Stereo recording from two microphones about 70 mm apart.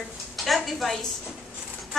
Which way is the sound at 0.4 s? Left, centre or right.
Centre.